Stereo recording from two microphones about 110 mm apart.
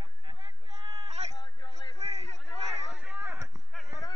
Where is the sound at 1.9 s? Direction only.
75° right (ahead or behind).